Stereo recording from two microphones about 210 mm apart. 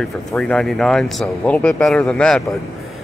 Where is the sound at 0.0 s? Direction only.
5° left (ahead or behind).